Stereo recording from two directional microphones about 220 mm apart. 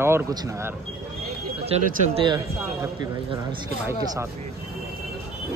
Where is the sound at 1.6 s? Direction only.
25° right (ahead or behind).